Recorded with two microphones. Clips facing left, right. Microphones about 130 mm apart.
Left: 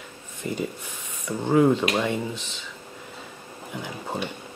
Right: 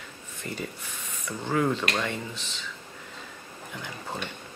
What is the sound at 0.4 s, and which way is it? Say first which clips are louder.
Speech: left 6 dB; 15° left (ahead or behind).